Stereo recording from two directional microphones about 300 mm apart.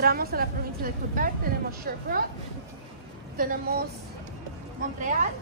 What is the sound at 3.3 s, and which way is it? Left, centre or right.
Speech, right.